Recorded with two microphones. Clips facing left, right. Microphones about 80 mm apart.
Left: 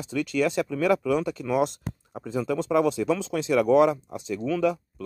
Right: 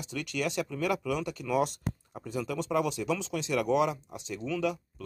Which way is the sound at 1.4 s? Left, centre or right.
Left.